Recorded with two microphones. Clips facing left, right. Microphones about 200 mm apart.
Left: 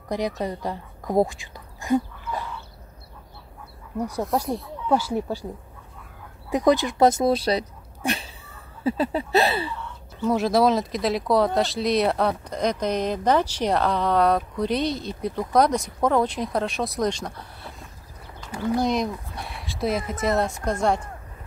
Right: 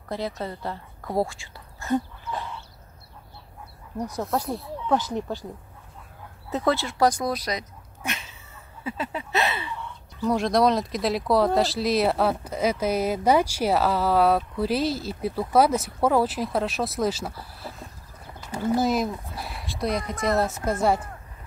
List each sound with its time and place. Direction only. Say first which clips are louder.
0.4 s speech: left 4 dB; 15° left (ahead or behind)
4.2 s speech: left 2 dB; centre (ahead or behind)
4.8 s speech: left 2 dB; 10° left (ahead or behind)
6.5 s speech: left 5 dB; 15° left (ahead or behind); by 9.7 s 35° left (ahead or behind)
10.2 s speech: left 1 dB; 5° left (ahead or behind)